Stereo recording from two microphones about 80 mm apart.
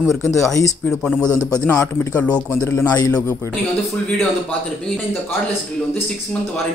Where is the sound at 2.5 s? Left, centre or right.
Left.